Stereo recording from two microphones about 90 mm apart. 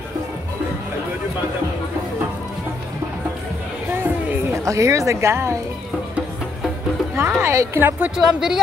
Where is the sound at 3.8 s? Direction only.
20° right (ahead or behind).